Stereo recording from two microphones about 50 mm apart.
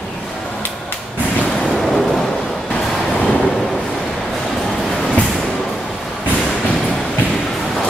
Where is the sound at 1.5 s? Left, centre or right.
Centre.